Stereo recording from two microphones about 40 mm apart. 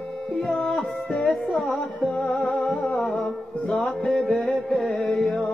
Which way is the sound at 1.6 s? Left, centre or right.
Centre.